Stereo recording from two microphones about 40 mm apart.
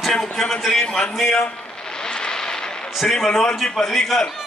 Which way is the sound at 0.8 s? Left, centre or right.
Left.